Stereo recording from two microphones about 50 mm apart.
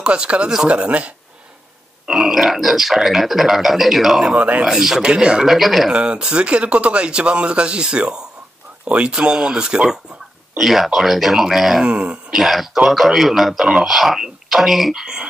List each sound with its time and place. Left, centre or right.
0.0 s speech: right
2.0 s speech: centre
4.4 s speech: right
4.6 s speech: centre
5.4 s speech: centre
5.9 s speech: centre
10.6 s speech: centre
11.8 s speech: right
12.3 s speech: centre